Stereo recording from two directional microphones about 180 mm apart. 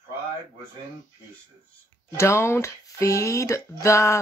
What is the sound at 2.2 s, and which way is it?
Speech, 15° left (ahead or behind).